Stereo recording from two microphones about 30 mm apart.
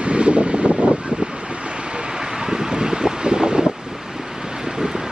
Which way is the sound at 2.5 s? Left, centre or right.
Right.